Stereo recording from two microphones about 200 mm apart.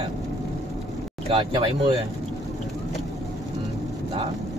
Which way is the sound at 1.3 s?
25° right (ahead or behind).